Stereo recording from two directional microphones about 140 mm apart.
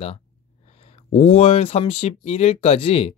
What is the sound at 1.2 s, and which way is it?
Speech, 45° left (ahead or behind).